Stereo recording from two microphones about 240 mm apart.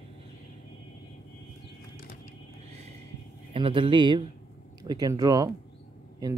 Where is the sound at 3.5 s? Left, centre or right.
Right.